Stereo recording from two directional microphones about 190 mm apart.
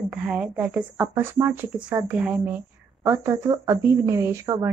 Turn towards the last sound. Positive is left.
turn(degrees=-15)  # may be behind; listen again after turning